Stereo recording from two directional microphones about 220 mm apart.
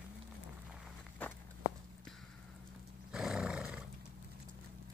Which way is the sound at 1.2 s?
5° left (ahead or behind).